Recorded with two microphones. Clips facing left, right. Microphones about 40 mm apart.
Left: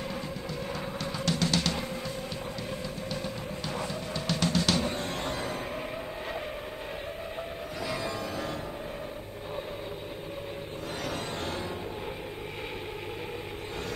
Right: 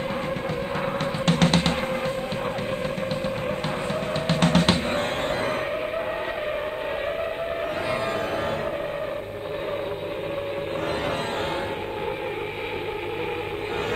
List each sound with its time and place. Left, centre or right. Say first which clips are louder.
1.2 s music: right 7 dB; right
4.3 s music: right 6 dB; right